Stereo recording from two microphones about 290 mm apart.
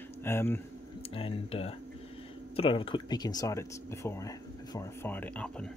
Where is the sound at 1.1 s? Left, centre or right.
Centre.